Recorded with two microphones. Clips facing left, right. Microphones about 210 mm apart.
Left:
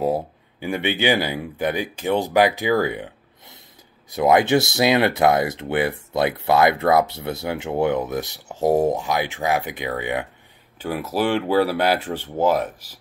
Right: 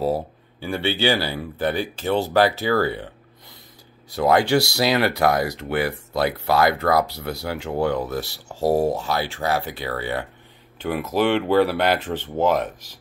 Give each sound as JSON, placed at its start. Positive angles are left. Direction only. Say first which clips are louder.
{"t": 0.0, "sound": "speech", "louder": "left 1 dB", "side_deg": 15}